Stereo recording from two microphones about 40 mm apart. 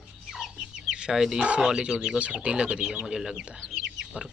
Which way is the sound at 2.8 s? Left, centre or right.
Centre.